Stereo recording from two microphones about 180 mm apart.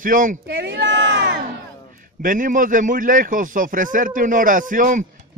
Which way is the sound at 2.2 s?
50° right (ahead or behind).